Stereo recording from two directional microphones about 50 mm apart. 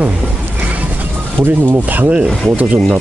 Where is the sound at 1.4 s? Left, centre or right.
Centre.